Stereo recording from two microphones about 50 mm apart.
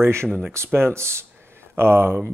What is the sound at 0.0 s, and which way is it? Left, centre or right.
Speech, right.